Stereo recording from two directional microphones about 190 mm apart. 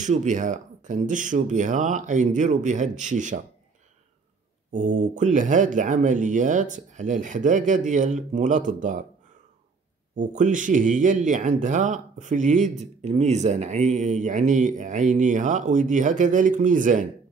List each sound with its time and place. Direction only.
0.0 s speech: 40° right (ahead or behind)
4.7 s speech: 40° right (ahead or behind)
10.1 s speech: 40° right (ahead or behind)